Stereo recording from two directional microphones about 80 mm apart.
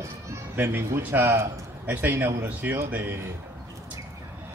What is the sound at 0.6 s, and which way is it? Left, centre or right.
A man's voice, right.